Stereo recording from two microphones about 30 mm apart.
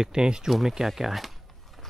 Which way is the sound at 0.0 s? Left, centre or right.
Right.